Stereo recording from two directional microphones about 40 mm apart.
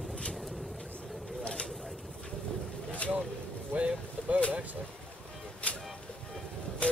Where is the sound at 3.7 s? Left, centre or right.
Right.